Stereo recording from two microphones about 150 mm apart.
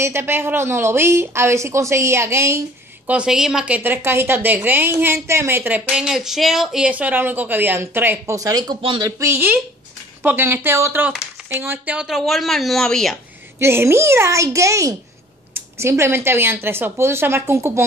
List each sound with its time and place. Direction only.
0.0 s a woman's voice: 15° right (ahead or behind)
3.1 s a woman's voice: 5° right (ahead or behind); by 9.1 s 30° right (ahead or behind)
9.2 s a woman's voice: 15° right (ahead or behind); by 13.2 s 5° left (ahead or behind)
13.6 s a child's voice: 15° right (ahead or behind)